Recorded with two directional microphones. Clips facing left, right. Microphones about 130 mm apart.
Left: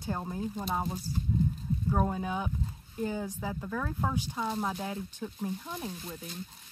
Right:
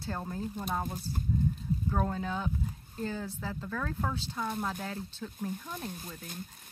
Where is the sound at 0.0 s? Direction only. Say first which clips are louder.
Left 2 dB; 15° left (ahead or behind).